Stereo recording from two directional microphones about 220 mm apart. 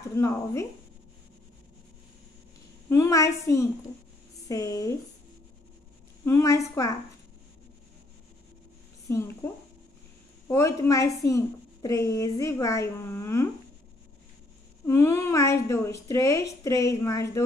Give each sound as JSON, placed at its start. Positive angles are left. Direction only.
{"t": 0.1, "sound": "a woman's voice", "side_deg": 15}
{"t": 2.9, "sound": "a woman's voice", "side_deg": 15}
{"t": 6.2, "sound": "a woman's voice", "side_deg": 15}
{"t": 9.1, "sound": "a woman's voice", "side_deg": 10}
{"t": 10.5, "sound": "a woman's voice", "side_deg": 15}
{"t": 14.9, "sound": "a woman's voice", "side_deg": 10}